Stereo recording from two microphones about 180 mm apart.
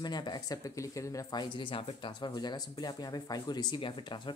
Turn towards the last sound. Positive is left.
turn(degrees=25)  # may be behind; listen again after turning